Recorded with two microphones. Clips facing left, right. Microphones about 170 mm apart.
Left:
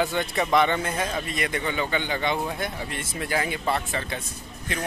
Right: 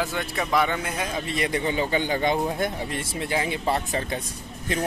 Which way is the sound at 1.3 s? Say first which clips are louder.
Right 3 dB; 30° right (ahead or behind).